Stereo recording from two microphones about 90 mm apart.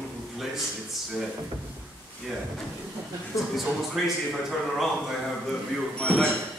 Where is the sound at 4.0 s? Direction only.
5° left (ahead or behind).